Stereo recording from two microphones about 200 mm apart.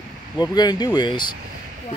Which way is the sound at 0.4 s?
20° left (ahead or behind).